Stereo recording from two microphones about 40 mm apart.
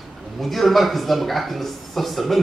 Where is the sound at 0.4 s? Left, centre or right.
Centre.